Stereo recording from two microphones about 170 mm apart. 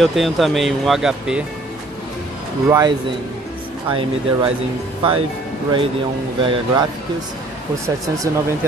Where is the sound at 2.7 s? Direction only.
20° right (ahead or behind).